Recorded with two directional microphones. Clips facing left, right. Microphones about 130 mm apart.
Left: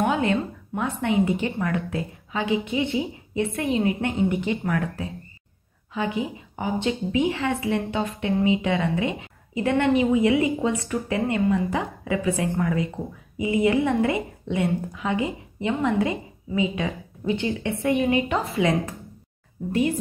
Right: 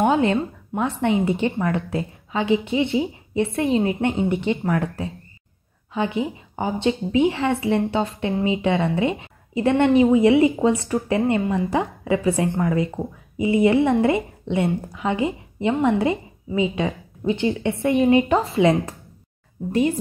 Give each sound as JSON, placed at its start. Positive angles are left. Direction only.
{"t": 0.0, "sound": "a woman's voice", "side_deg": -30}